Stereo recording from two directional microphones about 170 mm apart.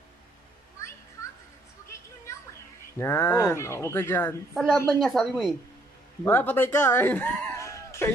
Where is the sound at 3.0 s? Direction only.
15° left (ahead or behind).